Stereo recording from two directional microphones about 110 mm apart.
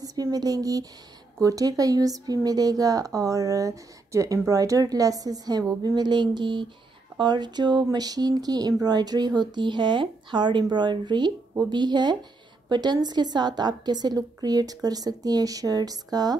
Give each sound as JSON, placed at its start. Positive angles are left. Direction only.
{"t": 0.0, "sound": "speech", "side_deg": -35}